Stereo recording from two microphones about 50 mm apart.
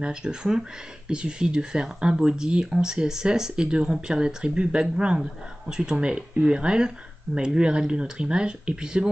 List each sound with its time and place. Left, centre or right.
0.0 s speech: centre